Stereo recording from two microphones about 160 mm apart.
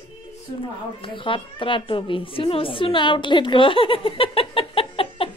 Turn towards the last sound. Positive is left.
turn(degrees=35)  # may be behind; listen again after turning